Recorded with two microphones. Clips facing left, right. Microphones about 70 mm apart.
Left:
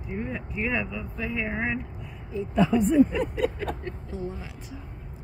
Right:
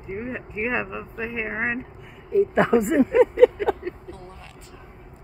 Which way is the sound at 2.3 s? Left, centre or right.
Right.